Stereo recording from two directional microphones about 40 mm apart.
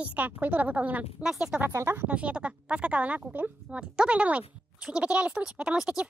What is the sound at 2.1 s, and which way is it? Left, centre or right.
Speech, right.